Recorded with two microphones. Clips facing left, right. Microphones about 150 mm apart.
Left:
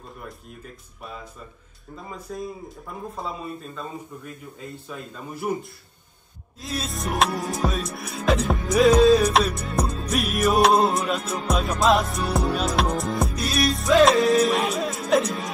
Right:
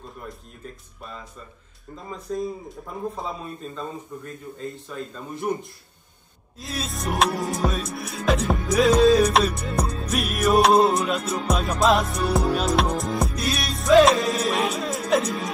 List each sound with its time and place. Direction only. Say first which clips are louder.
2.2 s music: right 6 dB; centre (ahead or behind)